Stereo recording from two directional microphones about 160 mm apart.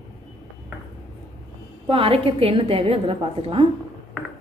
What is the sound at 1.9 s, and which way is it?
A woman's voice, 35° right (ahead or behind).